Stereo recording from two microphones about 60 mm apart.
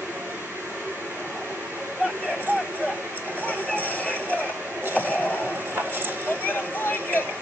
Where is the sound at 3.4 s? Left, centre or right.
Left.